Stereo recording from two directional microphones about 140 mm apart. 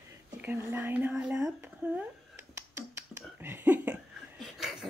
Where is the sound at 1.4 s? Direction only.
15° right (ahead or behind).